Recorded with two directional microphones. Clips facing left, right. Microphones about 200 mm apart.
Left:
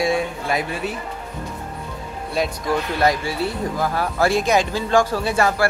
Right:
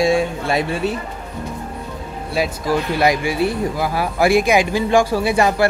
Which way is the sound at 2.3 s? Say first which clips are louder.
Right 2 dB; 5° right (ahead or behind).